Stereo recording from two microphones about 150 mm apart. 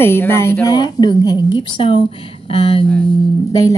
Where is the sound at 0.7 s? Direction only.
30° left (ahead or behind).